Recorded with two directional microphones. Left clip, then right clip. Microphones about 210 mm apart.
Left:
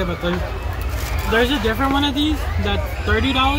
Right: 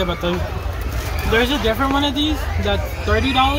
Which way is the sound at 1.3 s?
25° right (ahead or behind).